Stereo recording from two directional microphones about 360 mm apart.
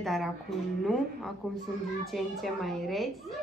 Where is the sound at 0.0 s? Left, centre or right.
Centre.